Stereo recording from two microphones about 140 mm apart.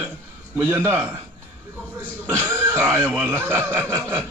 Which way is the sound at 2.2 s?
15° right (ahead or behind).